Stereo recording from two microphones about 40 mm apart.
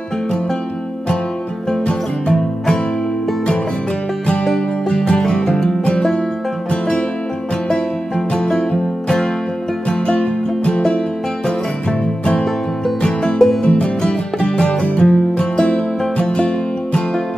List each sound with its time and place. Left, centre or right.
1.9 s music: centre
4.8 s music: left
6.7 s music: left
8.3 s music: centre
9.8 s music: left
13.0 s music: left